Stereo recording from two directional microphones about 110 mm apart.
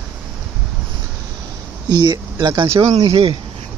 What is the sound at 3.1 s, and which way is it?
Speech, 60° right (ahead or behind).